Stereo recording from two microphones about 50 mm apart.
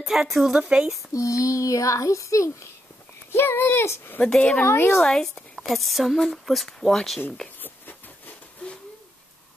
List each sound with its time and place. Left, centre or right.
0.0 s a woman's voice: centre
0.6 s speech: centre
1.1 s a child's voice: left
3.3 s a child's voice: left
3.8 s a woman's voice: left
4.4 s speech: left
4.6 s a woman's voice: left
5.0 s speech: centre
5.7 s speech: centre